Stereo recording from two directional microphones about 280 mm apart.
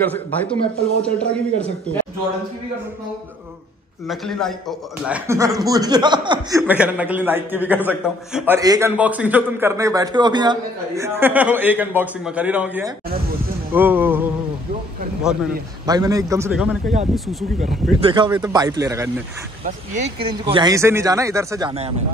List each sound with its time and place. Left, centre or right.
0.0 s speech: centre
4.1 s a man's voice: centre
6.7 s a man's voice: centre
15.8 s a man's voice: centre
18.0 s a man's voice: centre
19.6 s a man's voice: right